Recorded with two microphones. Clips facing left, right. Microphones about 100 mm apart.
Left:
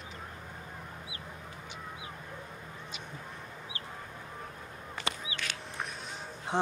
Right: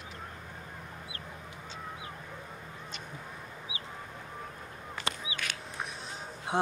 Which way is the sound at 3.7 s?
10° right (ahead or behind).